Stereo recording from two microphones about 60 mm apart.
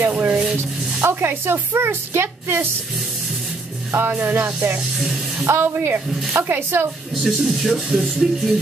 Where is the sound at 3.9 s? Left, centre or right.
Right.